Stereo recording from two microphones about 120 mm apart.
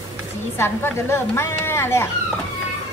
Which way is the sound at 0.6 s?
20° left (ahead or behind).